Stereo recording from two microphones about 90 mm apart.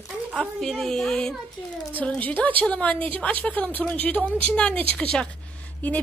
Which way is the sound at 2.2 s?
20° left (ahead or behind).